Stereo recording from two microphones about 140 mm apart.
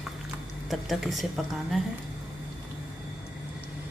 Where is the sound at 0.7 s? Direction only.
Centre (ahead or behind).